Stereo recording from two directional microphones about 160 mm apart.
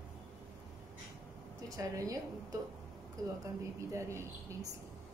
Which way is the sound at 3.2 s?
20° right (ahead or behind).